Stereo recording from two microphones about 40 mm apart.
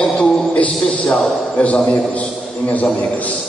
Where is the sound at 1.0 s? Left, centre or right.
Centre.